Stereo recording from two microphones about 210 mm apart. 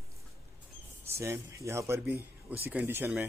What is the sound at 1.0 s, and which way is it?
Speech, 15° right (ahead or behind).